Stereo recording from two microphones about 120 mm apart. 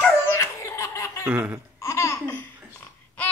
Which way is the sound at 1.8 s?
25° left (ahead or behind).